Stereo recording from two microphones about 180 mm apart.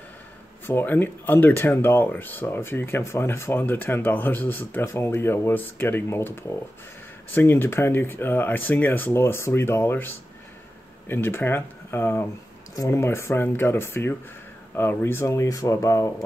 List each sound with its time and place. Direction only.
0.7 s speech: 10° left (ahead or behind)